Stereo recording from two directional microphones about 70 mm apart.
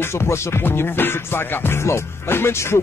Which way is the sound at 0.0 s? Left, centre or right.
Left.